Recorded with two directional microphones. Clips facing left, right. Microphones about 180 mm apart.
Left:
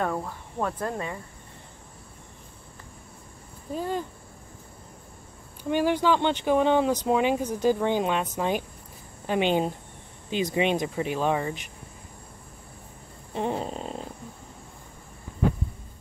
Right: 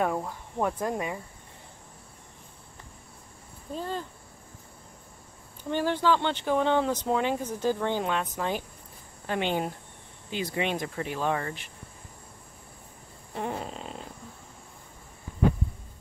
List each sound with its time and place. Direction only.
0.0 s speech: 10° right (ahead or behind)
3.7 s speech: 10° left (ahead or behind)
5.6 s speech: 10° left (ahead or behind)
13.3 s fart: 25° left (ahead or behind)
13.7 s snoring: 40° left (ahead or behind)